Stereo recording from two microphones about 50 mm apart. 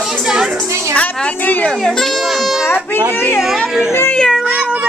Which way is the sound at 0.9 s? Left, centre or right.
Left.